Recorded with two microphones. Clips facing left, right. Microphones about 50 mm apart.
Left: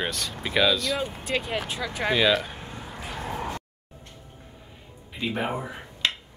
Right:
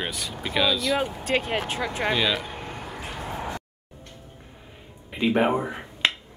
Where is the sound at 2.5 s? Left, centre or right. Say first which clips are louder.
Right 4 dB; right.